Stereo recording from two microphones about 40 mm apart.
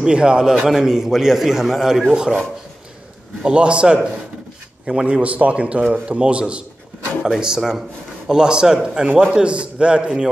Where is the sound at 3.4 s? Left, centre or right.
Right.